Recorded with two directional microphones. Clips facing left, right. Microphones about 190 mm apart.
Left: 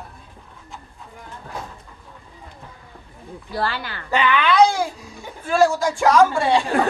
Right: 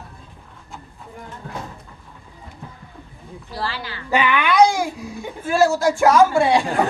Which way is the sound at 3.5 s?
55° left (ahead or behind).